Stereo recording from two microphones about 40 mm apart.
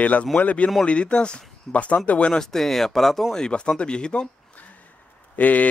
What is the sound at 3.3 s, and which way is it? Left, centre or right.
Speech, left.